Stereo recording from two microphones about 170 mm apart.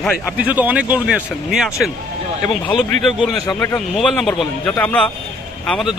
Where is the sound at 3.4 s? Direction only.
20° left (ahead or behind).